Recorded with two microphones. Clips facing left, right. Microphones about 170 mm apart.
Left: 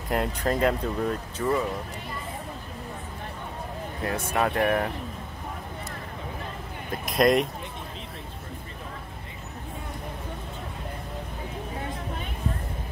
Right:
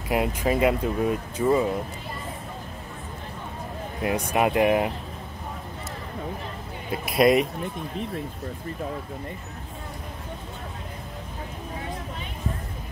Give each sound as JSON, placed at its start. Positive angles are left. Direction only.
{"t": 0.1, "sound": "speech", "side_deg": -5}
{"t": 4.0, "sound": "speech", "side_deg": -15}
{"t": 6.9, "sound": "speech", "side_deg": -5}